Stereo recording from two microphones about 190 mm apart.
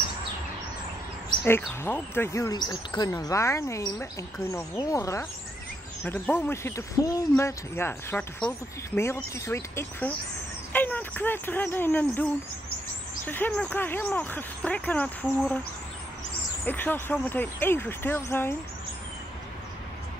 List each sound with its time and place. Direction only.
1.8 s speech: 10° left (ahead or behind)
16.6 s speech: 10° left (ahead or behind)